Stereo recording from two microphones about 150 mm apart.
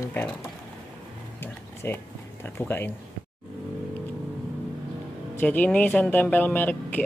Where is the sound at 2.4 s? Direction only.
15° left (ahead or behind).